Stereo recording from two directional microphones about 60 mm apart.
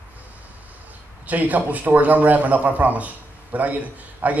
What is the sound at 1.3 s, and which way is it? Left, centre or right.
A man's voice, right.